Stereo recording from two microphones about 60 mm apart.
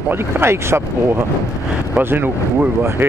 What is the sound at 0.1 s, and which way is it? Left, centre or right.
Speech, right.